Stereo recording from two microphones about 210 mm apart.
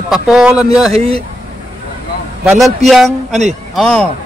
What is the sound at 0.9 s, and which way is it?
Speech, 30° right (ahead or behind).